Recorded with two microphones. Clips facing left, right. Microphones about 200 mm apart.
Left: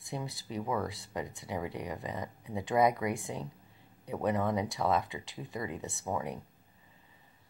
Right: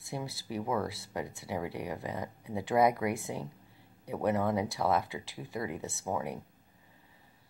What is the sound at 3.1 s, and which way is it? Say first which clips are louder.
Speech: right 1 dB; 15° left (ahead or behind).